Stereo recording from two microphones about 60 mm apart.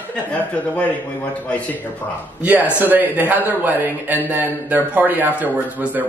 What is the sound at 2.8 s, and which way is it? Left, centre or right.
A man's voice, right.